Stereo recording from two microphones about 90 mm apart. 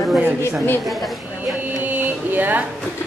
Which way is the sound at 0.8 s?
Centre (ahead or behind).